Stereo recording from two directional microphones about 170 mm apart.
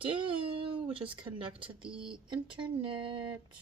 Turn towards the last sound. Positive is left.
turn(degrees=-30)  # may be behind; listen again after turning